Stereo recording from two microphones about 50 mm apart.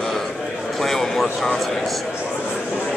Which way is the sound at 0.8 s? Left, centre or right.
Centre.